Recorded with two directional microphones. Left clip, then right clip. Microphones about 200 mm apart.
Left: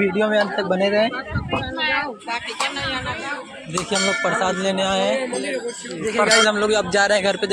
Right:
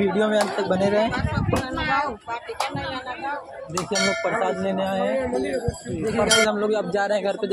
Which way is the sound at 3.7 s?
5° left (ahead or behind).